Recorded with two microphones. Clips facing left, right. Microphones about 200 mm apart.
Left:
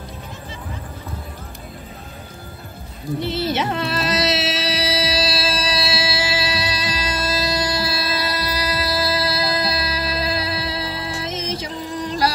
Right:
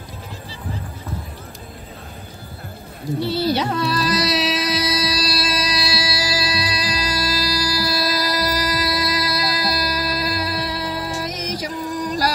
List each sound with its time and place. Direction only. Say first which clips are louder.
3.2 s music: right 2 dB; 20° left (ahead or behind)